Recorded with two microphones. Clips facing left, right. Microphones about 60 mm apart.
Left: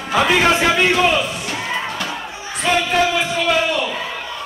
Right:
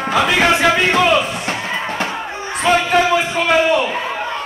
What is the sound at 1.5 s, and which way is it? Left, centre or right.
Music, right.